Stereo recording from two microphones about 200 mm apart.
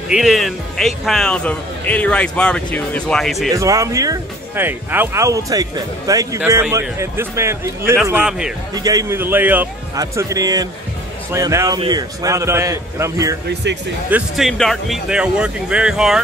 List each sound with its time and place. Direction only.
0.1 s speech: centre (ahead or behind)
3.5 s speech: 15° right (ahead or behind)
8.7 s speech: 15° right (ahead or behind)
14.1 s speech: centre (ahead or behind)